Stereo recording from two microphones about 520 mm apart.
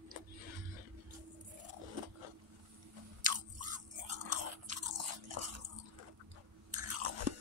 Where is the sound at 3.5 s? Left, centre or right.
Right.